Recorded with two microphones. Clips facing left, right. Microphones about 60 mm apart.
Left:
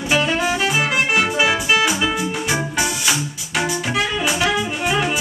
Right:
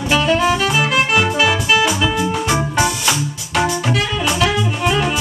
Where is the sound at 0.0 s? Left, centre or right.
Centre.